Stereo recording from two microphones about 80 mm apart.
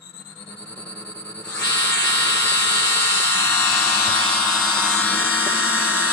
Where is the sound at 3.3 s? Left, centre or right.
Left.